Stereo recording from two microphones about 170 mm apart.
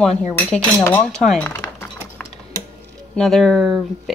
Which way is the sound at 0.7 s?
15° left (ahead or behind).